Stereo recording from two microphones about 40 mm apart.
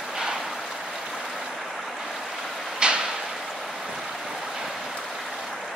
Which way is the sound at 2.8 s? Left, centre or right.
Right.